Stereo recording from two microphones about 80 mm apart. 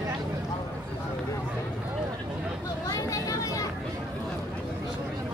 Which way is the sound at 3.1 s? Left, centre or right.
Left.